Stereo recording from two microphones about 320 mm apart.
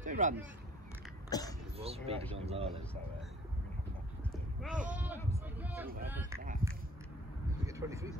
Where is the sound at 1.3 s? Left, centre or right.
Centre.